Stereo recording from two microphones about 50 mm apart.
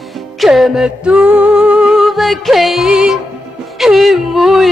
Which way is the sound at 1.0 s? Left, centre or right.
Right.